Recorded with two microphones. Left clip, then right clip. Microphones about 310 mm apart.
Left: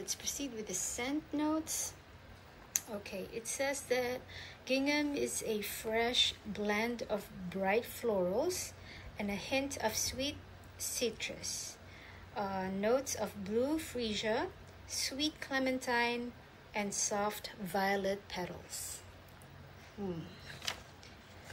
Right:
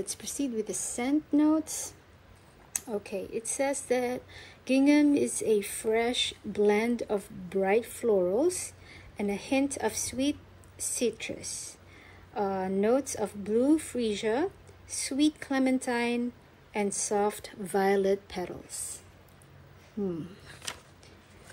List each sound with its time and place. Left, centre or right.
0.0 s a woman's voice: centre